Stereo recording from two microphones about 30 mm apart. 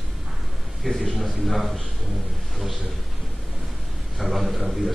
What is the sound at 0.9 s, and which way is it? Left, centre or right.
Speech, centre.